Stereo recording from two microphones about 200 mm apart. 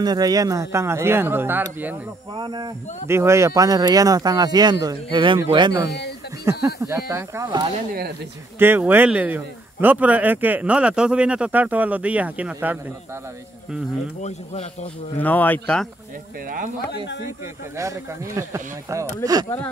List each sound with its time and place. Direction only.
0.0 s a man's voice: 20° right (ahead or behind)
2.3 s speech: 20° right (ahead or behind)
5.9 s speech: 55° left (ahead or behind)
6.6 s a man's voice: 15° right (ahead or behind)
14.2 s speech: 35° left (ahead or behind)
15.1 s speech: 10° left (ahead or behind)
16.4 s speech: 45° right (ahead or behind)
17.7 s a man's voice: 15° right (ahead or behind)